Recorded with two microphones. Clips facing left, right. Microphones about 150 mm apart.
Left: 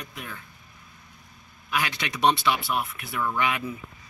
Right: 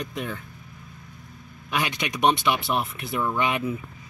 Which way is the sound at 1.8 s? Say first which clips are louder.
Right 1 dB; 20° right (ahead or behind).